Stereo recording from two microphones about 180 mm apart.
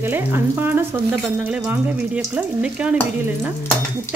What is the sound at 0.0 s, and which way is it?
Speech, 10° right (ahead or behind).